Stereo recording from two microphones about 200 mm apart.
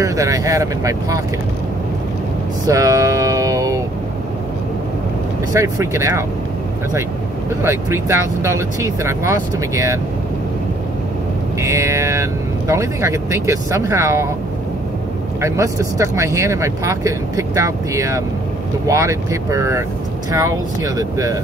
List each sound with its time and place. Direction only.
0.0 s speech: 15° right (ahead or behind)
2.6 s vehicle: 15° right (ahead or behind)
5.5 s speech: 15° right (ahead or behind)
7.6 s speech: 15° right (ahead or behind)
11.6 s speech: 15° right (ahead or behind)
15.4 s speech: 15° right (ahead or behind)